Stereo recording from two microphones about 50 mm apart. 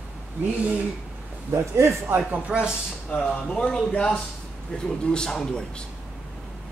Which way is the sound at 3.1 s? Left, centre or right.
Left.